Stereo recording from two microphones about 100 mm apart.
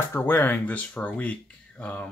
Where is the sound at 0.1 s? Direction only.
20° left (ahead or behind).